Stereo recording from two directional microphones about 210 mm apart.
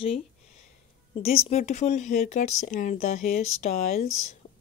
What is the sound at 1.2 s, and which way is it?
Speech, 30° left (ahead or behind).